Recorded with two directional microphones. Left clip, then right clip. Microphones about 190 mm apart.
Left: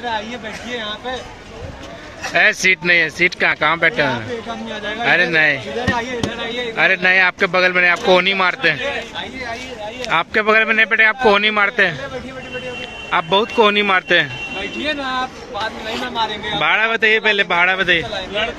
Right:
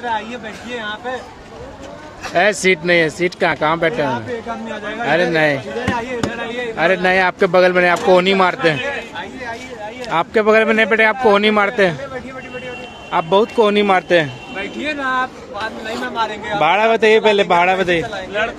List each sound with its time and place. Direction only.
0.7 s speech: 5° right (ahead or behind)
2.3 s speech: 20° right (ahead or behind)
10.0 s speech: 15° right (ahead or behind)
13.1 s speech: 10° right (ahead or behind)
16.2 s speech: 10° right (ahead or behind)